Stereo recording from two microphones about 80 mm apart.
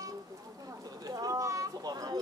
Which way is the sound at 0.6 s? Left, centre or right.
Right.